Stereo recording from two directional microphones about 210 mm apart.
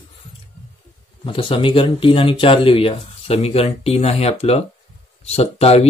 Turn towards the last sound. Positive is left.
turn(degrees=30)  # may be behind; listen again after turning